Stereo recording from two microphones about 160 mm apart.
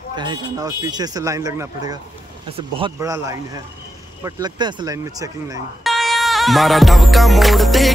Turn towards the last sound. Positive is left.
turn(degrees=0)  # may be behind; listen again after turning